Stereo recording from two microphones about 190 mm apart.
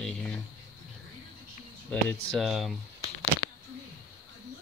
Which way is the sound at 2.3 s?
Centre (ahead or behind).